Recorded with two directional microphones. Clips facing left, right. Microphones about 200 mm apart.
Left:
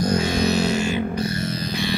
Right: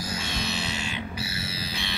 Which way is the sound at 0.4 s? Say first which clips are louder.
Left 12 dB; 40° left (ahead or behind).